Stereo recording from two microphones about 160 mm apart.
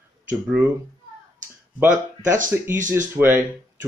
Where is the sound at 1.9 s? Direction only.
55° right (ahead or behind).